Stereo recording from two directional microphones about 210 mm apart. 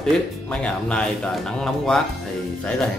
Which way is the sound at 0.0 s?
5° left (ahead or behind).